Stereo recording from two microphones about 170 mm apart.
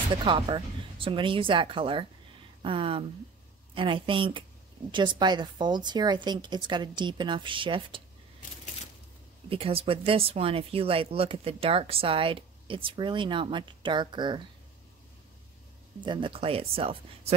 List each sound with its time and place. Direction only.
0.1 s a woman's voice: 30° right (ahead or behind)
9.5 s speech: 35° right (ahead or behind)
16.0 s speech: 30° right (ahead or behind)